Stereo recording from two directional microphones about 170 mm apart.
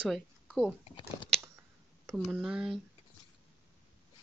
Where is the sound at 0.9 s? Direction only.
30° left (ahead or behind).